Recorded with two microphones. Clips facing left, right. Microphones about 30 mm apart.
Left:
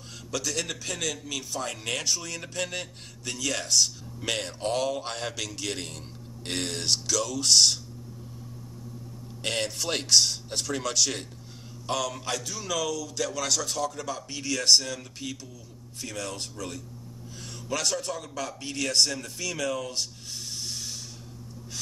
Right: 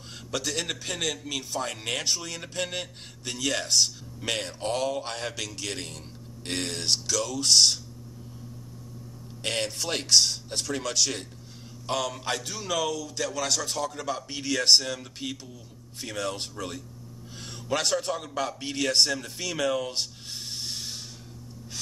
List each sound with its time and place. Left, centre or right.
0.3 s a man's voice: right; by 7.8 s centre
9.4 s speech: centre
11.9 s a man's voice: centre
12.3 s a man's voice: right
20.5 s a sound: right